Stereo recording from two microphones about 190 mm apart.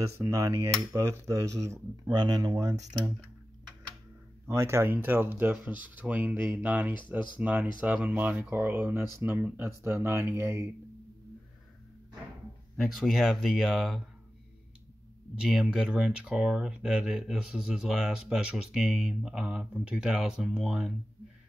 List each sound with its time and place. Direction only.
0.0 s speech: 15° right (ahead or behind)
4.5 s speech: 15° right (ahead or behind)
12.7 s speech: centre (ahead or behind)
15.4 s speech: 5° right (ahead or behind)